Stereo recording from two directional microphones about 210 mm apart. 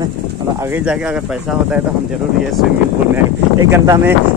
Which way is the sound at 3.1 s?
15° right (ahead or behind).